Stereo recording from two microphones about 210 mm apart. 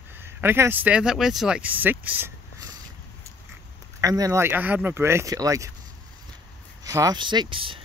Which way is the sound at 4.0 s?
15° right (ahead or behind).